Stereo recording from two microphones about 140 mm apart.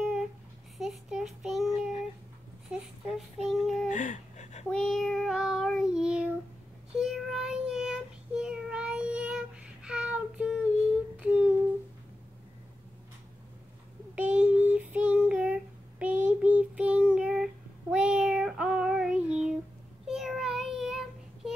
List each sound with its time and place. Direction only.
0.0 s babbling: centre (ahead or behind)
0.7 s child singing: 5° right (ahead or behind)
2.7 s child singing: centre (ahead or behind)
3.9 s a sound: 60° left (ahead or behind)
4.6 s child singing: 5° left (ahead or behind)
11.1 s humming: 10° right (ahead or behind)
14.1 s child singing: 10° right (ahead or behind)